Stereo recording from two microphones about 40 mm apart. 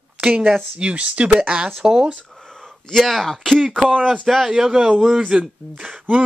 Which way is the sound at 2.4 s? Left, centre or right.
Centre.